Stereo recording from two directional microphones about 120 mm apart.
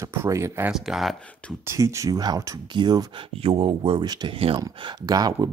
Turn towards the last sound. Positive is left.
turn(degrees=-35)  # may be behind; listen again after turning